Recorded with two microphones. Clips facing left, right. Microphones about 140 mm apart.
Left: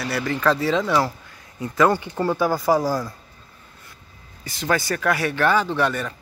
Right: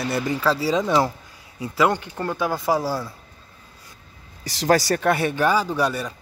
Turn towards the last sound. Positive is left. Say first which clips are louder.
# left 1 dB
turn(degrees=-10)  # may be behind; listen again after turning